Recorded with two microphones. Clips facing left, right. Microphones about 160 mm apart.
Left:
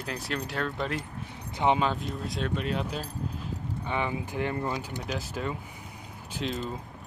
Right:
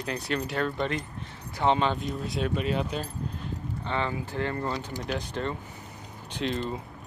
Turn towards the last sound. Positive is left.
turn(degrees=0)  # may be behind; listen again after turning